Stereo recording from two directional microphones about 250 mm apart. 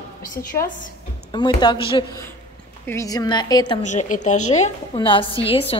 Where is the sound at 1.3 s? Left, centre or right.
Centre.